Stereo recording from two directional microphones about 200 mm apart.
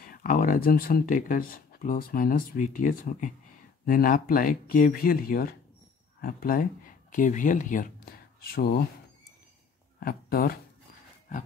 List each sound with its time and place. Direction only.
0.0 s speech: 45° left (ahead or behind)
9.9 s speech: 50° left (ahead or behind)